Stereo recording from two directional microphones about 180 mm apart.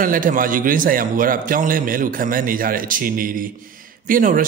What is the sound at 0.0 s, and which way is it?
A man's voice, 50° right (ahead or behind).